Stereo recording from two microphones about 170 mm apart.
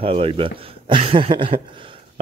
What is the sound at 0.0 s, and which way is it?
Speech, 30° right (ahead or behind).